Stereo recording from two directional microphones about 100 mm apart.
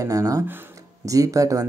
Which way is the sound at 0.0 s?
35° right (ahead or behind).